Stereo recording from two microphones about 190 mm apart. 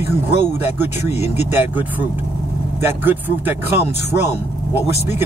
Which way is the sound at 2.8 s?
10° right (ahead or behind).